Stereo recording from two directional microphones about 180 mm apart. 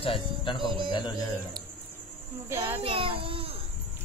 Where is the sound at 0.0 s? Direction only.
30° left (ahead or behind).